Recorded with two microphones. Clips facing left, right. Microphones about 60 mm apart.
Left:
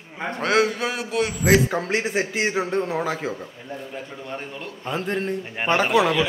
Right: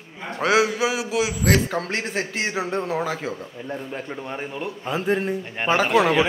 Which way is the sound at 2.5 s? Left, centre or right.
Centre.